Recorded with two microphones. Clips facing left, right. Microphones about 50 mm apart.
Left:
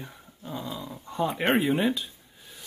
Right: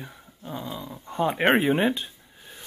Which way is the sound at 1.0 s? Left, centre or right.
Right.